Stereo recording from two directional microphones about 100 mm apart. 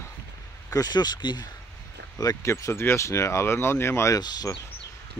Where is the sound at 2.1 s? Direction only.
30° left (ahead or behind).